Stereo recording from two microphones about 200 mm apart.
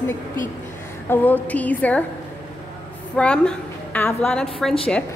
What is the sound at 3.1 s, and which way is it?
A woman's voice, 5° left (ahead or behind).